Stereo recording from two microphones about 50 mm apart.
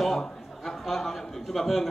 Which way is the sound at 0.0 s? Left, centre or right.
Centre.